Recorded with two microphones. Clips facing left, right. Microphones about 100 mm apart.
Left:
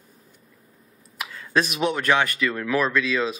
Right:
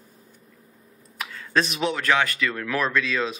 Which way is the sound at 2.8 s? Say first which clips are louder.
Even; 5° left (ahead or behind).